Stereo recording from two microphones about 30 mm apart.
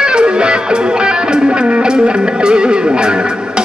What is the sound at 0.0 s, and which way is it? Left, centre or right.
Music, right.